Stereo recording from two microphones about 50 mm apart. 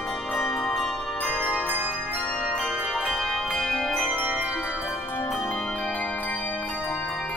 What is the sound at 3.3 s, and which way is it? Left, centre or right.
Change ringing, centre.